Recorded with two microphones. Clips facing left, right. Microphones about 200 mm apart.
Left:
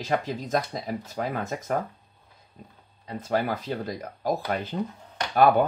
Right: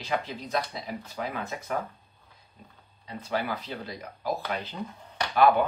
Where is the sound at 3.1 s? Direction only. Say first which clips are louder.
Left 4 dB; 45° left (ahead or behind).